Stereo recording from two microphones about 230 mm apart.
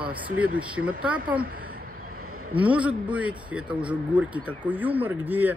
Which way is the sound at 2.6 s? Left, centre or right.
Centre.